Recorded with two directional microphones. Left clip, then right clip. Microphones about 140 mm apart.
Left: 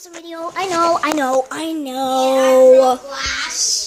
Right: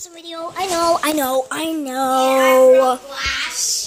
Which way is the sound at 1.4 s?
10° right (ahead or behind).